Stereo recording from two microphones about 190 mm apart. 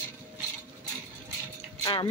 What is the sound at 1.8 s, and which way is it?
Speech, 20° left (ahead or behind).